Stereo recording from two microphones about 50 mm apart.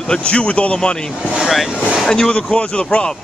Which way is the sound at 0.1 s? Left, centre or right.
Left.